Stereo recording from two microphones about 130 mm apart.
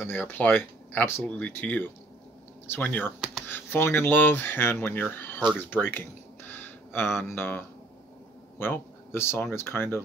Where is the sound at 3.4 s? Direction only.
15° left (ahead or behind).